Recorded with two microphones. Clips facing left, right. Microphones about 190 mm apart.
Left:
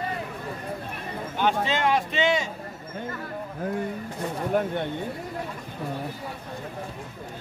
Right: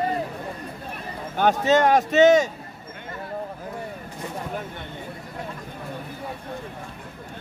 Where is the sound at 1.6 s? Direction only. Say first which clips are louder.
Right 6 dB; 45° right (ahead or behind).